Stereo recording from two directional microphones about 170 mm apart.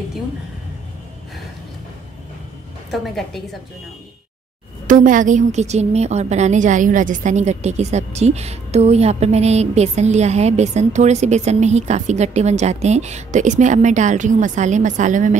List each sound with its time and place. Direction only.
2.9 s a woman's voice: centre (ahead or behind)
4.8 s a woman's voice: 50° right (ahead or behind)